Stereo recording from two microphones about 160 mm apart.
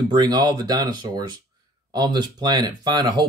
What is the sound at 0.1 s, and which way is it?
Speech, 25° right (ahead or behind).